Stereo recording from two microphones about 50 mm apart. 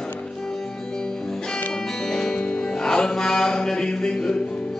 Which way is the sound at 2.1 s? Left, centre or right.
Centre.